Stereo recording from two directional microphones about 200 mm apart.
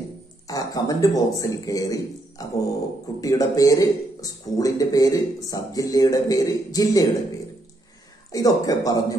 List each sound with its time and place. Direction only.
0.5 s a man's voice: 15° left (ahead or behind)
8.3 s speech: 20° left (ahead or behind)